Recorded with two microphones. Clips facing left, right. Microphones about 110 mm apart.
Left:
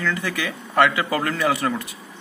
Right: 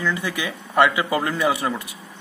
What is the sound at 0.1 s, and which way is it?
Speech, 20° right (ahead or behind).